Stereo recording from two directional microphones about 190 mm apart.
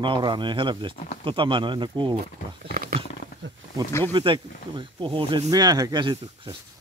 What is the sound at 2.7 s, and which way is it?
Wild animals, 45° right (ahead or behind).